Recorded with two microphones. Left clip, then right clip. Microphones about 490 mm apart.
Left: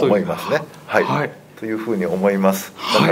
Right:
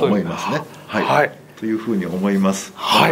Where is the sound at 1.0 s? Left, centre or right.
Right.